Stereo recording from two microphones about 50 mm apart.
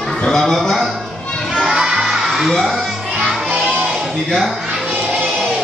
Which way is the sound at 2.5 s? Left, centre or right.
Centre.